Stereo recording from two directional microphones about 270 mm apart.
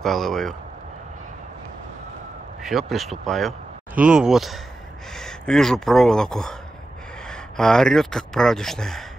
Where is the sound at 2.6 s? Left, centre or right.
Centre.